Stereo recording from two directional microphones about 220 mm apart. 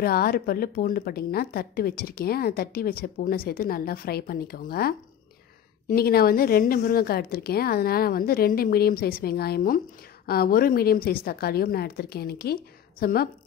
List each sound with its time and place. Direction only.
0.0 s a woman's voice: 45° left (ahead or behind)